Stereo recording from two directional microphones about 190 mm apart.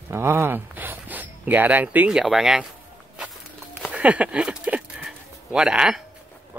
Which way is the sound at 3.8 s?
5° right (ahead or behind).